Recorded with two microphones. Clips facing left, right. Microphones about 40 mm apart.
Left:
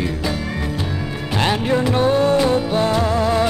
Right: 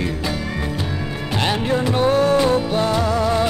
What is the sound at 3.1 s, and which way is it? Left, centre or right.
Music, left.